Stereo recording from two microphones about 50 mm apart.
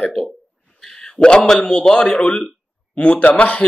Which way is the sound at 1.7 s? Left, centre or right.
Centre.